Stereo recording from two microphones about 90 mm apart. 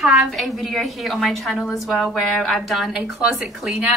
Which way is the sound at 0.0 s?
Centre (ahead or behind).